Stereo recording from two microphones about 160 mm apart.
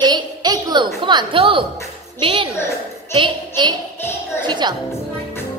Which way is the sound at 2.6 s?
15° left (ahead or behind).